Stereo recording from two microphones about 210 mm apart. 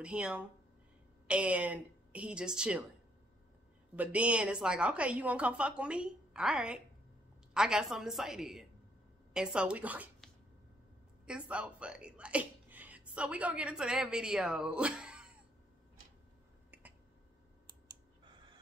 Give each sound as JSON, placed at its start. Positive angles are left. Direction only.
{"t": 0.0, "sound": "a woman's voice", "side_deg": -5}
{"t": 3.9, "sound": "a woman's voice", "side_deg": -5}
{"t": 17.8, "sound": "clicking", "side_deg": -20}